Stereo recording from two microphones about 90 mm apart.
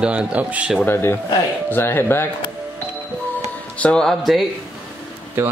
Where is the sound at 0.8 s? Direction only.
25° left (ahead or behind).